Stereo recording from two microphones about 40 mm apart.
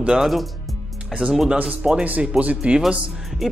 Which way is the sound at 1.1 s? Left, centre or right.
Right.